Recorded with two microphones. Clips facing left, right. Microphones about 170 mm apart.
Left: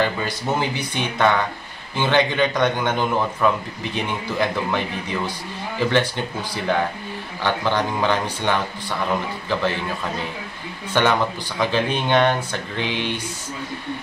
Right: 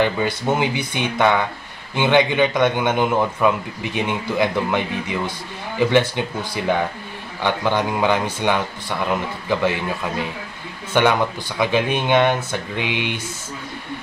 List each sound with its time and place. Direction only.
0.0 s a man's voice: 15° right (ahead or behind)
10.9 s a man's voice: 10° right (ahead or behind)